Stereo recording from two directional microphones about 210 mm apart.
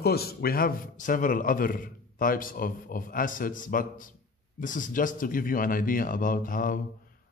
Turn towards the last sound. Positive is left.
turn(degrees=40)  # may be behind; listen again after turning